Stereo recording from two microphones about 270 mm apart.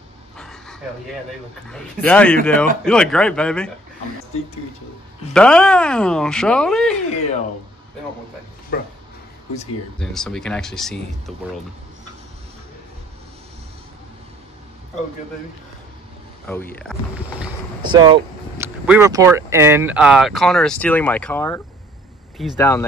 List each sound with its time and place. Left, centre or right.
0.4 s a sound: centre
1.7 s speech: centre
5.3 s speech: centre
8.7 s speech: left
9.9 s speech: centre
16.4 s speech: centre
17.8 s speech: centre
22.6 s speech: centre